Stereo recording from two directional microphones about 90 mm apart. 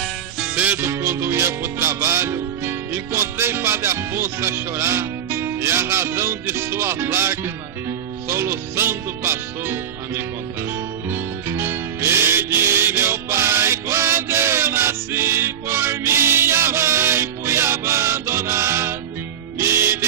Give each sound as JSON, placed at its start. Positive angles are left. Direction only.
{"t": 0.4, "sound": "music", "side_deg": -15}